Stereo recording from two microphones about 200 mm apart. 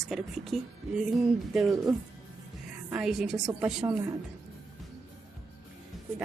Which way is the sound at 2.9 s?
5° right (ahead or behind).